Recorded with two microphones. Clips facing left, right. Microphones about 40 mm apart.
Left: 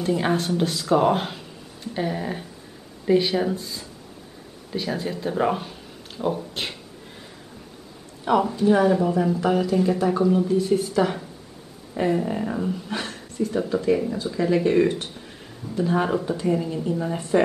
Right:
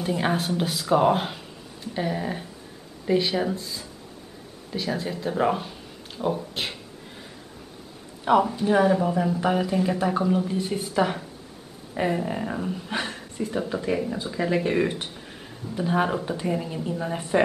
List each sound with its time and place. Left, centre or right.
0.0 s speech: centre
8.3 s speech: centre